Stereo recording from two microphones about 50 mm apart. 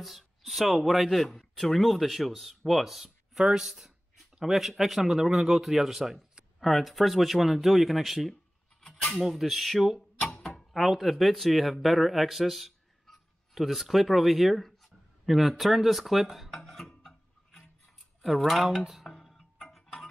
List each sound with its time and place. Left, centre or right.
0.0 s speech: centre
16.8 s tick-tock: centre
18.2 s speech: centre
19.0 s music: centre